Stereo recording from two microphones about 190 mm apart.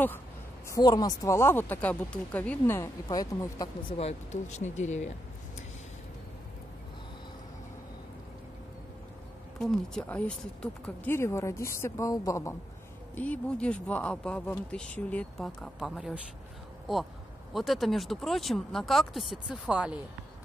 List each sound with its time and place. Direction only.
0.7 s speech: 20° left (ahead or behind)
4.0 s speech: 35° left (ahead or behind)
9.6 s speech: centre (ahead or behind)
17.6 s speech: centre (ahead or behind)